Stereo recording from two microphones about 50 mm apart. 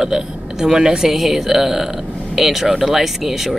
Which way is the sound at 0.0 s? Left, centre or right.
Centre.